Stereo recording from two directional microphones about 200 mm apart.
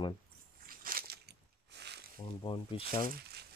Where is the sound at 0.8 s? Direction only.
45° right (ahead or behind).